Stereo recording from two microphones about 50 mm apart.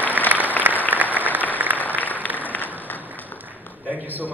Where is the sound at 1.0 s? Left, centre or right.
Right.